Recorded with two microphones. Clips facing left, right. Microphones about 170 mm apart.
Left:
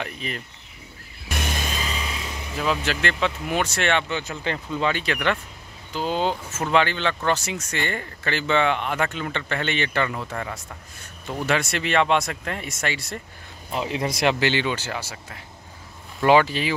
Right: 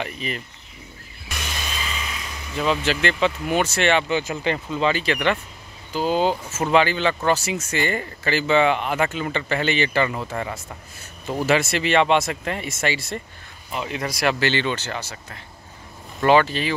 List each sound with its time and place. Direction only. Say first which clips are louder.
0.0 s speech: right 2 dB; 5° right (ahead or behind)
1.3 s vehicle: left 4 dB; 50° left (ahead or behind); by 2.1 s 35° left (ahead or behind)
2.5 s speech: right 3 dB; centre (ahead or behind)
4.1 s speech: right 5 dB; 15° right (ahead or behind)
13.7 s speech: left 2 dB; 30° left (ahead or behind); by 16.7 s 15° left (ahead or behind)